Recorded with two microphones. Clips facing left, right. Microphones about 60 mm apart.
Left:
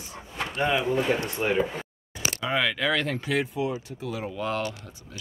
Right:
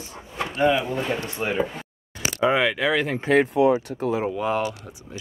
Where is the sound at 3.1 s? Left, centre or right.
Right.